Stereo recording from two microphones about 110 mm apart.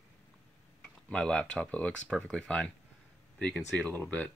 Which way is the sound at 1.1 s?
5° left (ahead or behind).